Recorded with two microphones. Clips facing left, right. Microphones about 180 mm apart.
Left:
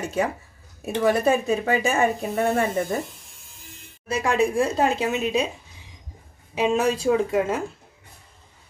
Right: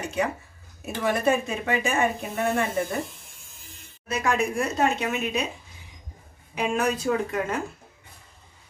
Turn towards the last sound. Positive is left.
turn(degrees=25)  # may be behind; listen again after turning